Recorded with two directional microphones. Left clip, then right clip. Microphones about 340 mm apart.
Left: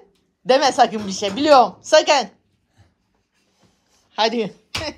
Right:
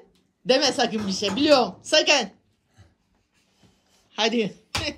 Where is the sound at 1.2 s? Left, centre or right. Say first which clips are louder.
Left 6 dB; centre.